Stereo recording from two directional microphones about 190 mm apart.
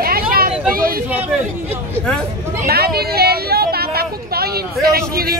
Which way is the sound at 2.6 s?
55° right (ahead or behind).